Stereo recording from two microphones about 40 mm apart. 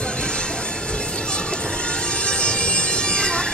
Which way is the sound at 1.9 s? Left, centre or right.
Left.